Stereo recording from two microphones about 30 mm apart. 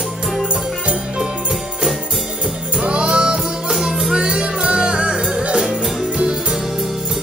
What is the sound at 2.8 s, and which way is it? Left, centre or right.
Music, right.